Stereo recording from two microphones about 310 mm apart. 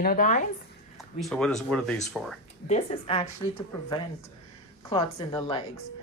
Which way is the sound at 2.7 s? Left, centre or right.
Centre.